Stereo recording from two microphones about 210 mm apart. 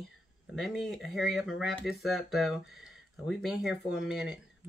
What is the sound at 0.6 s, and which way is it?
Speech, centre (ahead or behind).